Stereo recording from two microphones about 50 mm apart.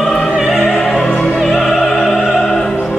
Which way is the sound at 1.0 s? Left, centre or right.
Centre.